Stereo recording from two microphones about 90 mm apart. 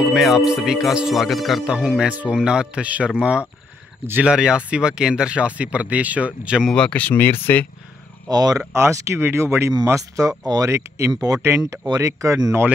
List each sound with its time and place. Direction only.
0.1 s speech: 5° right (ahead or behind)
6.7 s speech: 10° left (ahead or behind)
8.3 s speech: 45° right (ahead or behind)
8.7 s speech: 30° right (ahead or behind)
10.1 s speech: 45° right (ahead or behind)